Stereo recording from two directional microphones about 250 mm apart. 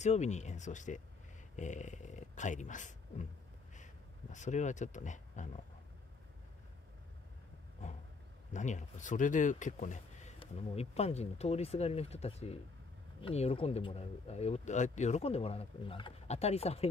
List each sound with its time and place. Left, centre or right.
0.0 s speech: left
8.5 s speech: left